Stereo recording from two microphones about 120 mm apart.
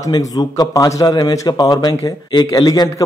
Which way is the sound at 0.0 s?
30° left (ahead or behind).